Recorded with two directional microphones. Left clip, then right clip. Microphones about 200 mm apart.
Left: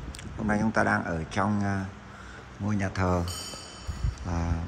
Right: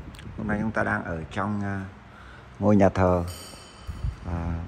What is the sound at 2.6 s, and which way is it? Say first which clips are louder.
Speech: right 10 dB; 20° right (ahead or behind).